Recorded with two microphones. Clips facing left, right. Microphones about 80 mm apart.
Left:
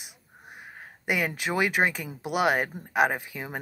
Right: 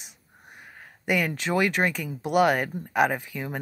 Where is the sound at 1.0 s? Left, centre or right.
Centre.